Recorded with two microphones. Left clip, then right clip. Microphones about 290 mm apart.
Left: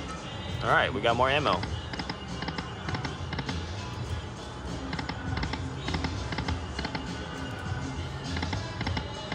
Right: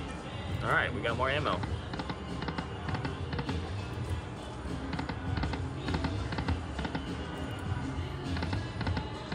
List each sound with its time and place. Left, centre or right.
0.7 s speech: centre